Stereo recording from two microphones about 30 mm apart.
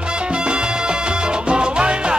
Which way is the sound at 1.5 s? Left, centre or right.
Right.